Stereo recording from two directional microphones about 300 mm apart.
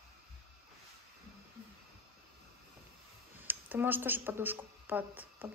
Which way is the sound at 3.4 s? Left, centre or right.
Centre.